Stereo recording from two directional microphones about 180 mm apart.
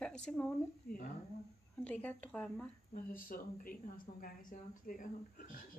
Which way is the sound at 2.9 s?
50° left (ahead or behind).